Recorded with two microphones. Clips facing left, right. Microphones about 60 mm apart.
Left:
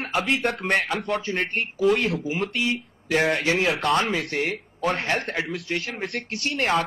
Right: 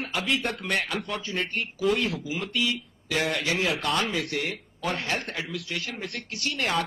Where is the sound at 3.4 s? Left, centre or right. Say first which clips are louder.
Left 4 dB; left.